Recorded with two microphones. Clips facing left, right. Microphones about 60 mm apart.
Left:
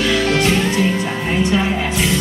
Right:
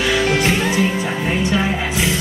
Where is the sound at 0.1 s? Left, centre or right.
Centre.